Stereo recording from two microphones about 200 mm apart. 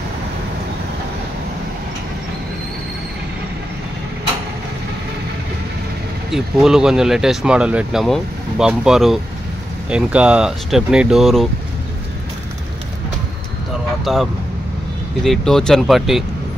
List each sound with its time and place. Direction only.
6.3 s speech: centre (ahead or behind)
14.0 s speech: centre (ahead or behind)